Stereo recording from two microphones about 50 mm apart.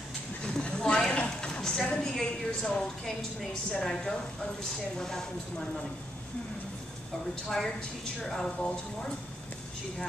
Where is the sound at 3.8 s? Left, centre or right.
Centre.